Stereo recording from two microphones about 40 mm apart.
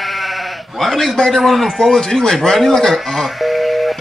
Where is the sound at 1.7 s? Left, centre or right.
Centre.